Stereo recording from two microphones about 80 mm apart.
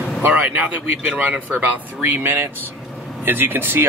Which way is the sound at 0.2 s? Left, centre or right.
Centre.